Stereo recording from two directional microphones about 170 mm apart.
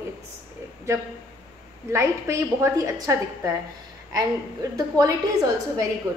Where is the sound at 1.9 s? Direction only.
15° right (ahead or behind).